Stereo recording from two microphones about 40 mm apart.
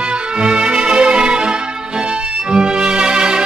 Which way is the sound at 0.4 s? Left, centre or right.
Right.